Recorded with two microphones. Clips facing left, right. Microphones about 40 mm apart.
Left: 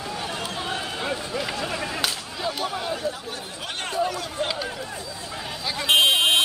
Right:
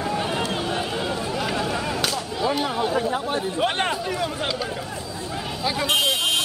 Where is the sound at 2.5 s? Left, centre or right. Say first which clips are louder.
Right 7 dB; centre.